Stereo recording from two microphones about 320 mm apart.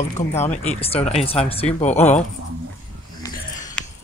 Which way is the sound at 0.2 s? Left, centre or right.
Left.